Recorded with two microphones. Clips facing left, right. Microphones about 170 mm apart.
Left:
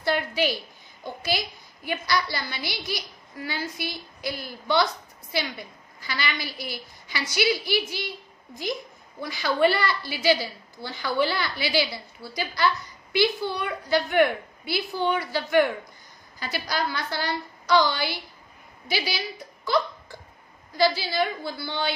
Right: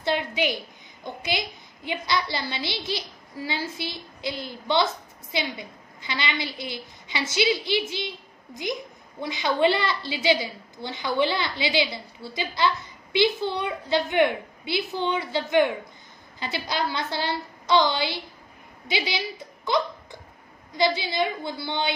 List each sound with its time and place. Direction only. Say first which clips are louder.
0.0 s a woman's voice: even; 20° right (ahead or behind)
9.2 s a woman's voice: even; 20° right (ahead or behind)